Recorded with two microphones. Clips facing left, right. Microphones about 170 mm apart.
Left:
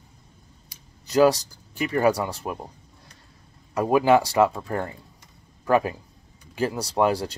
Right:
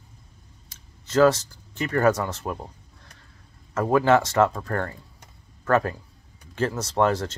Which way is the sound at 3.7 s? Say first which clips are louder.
Left 1 dB; 15° left (ahead or behind).